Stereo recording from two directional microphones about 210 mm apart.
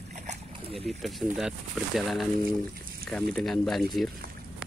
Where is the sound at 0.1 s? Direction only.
30° right (ahead or behind).